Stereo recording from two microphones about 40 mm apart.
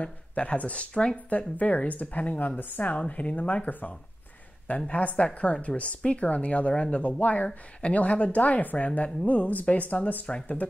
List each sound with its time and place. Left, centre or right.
0.0 s speech: left
1.6 s speech: left
3.1 s speech: left
10.2 s speech: left